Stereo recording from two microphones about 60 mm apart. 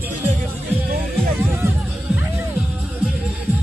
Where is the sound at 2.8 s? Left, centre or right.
Right.